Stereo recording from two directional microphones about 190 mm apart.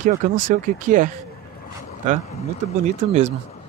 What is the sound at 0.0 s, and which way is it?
Speech, 45° right (ahead or behind).